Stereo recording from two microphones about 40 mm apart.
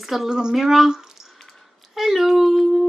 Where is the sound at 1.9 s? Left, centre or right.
Centre.